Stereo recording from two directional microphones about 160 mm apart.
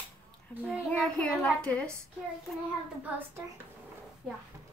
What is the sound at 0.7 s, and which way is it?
Speech, 5° left (ahead or behind).